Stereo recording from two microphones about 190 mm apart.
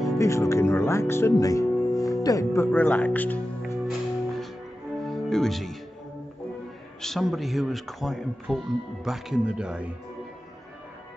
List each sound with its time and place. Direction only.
0.2 s speech: 15° left (ahead or behind)
3.8 s music: centre (ahead or behind)
7.0 s speech: centre (ahead or behind)